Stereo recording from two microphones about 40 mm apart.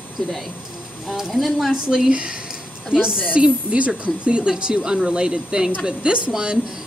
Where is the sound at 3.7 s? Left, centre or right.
Right.